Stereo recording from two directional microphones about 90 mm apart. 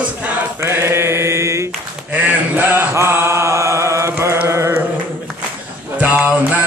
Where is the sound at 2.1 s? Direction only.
20° right (ahead or behind).